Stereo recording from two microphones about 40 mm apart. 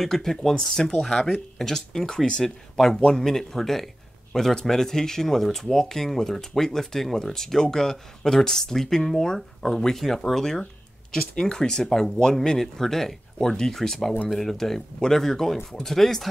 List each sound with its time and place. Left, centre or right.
0.0 s speech: centre
3.3 s a man's voice: centre
5.4 s speech: centre